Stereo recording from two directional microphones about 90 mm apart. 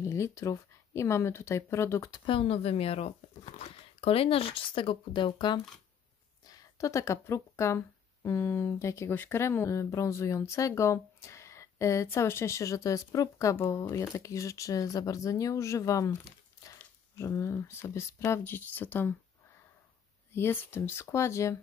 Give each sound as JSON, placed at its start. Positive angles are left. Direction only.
{"t": 0.0, "sound": "speech", "side_deg": 35}
{"t": 2.0, "sound": "speech", "side_deg": 60}
{"t": 6.4, "sound": "speech", "side_deg": 40}
{"t": 17.2, "sound": "speech", "side_deg": 30}
{"t": 20.3, "sound": "speech", "side_deg": 25}